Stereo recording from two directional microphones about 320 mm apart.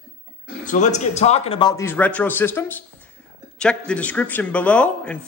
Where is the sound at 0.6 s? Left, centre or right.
Left.